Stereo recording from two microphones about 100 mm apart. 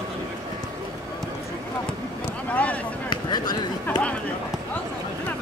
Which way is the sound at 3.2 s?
45° left (ahead or behind).